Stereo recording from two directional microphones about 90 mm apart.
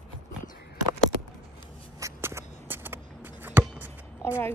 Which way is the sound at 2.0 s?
30° right (ahead or behind).